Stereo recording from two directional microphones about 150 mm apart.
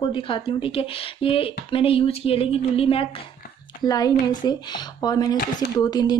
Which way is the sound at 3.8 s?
25° left (ahead or behind).